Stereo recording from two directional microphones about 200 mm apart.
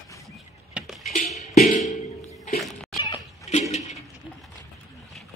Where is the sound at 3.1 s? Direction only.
35° left (ahead or behind).